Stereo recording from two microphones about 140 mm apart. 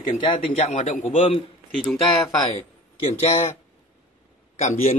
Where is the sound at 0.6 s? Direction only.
55° left (ahead or behind).